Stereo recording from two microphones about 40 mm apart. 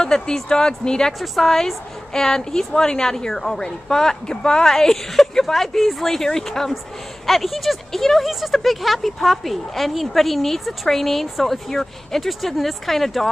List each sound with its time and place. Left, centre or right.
0.0 s a woman's voice: centre
1.2 s a woman's voice: centre
7.2 s speech: centre
8.2 s speech: centre